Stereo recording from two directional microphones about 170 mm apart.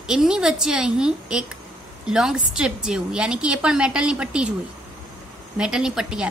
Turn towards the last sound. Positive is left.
turn(degrees=-5)  # may be behind; listen again after turning